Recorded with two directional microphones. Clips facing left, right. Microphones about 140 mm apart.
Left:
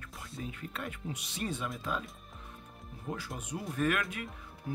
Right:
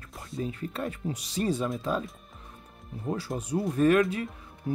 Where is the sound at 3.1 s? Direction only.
35° right (ahead or behind).